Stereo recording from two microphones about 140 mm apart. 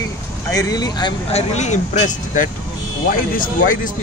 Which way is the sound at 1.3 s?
55° left (ahead or behind).